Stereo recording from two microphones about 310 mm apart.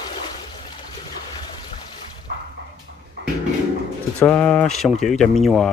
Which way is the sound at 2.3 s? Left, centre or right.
Right.